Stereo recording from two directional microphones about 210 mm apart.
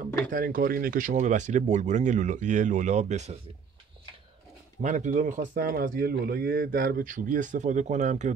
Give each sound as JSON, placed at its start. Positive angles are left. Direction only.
{"t": 0.3, "sound": "speech", "side_deg": -40}
{"t": 4.8, "sound": "speech", "side_deg": -35}